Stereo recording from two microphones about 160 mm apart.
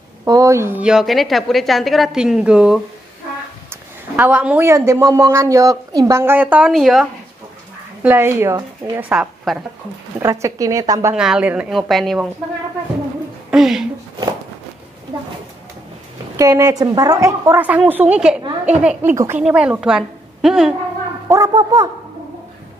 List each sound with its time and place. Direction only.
0.2 s a woman's voice: 20° right (ahead or behind)
4.2 s a woman's voice: 10° right (ahead or behind)
8.0 s a woman's voice: 15° right (ahead or behind)
9.1 s a woman's voice: centre (ahead or behind)
10.2 s a woman's voice: 20° right (ahead or behind)
11.1 s a woman's voice: 5° right (ahead or behind)
13.5 s speech: 5° right (ahead or behind)
16.3 s a woman's voice: 20° right (ahead or behind); by 20.7 s 5° right (ahead or behind)
21.3 s a woman's voice: 25° right (ahead or behind)